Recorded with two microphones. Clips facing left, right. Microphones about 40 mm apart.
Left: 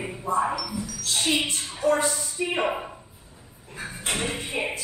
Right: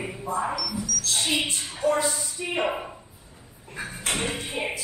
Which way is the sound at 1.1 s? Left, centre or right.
Centre.